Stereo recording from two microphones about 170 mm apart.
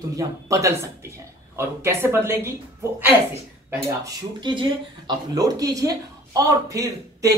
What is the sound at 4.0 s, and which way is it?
A woman's voice, 25° right (ahead or behind).